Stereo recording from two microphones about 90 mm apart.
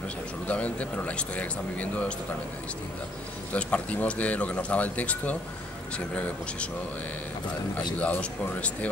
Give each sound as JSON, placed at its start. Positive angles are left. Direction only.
{"t": 0.5, "sound": "speech", "side_deg": 15}
{"t": 3.5, "sound": "speech", "side_deg": 15}
{"t": 8.0, "sound": "speech", "side_deg": 15}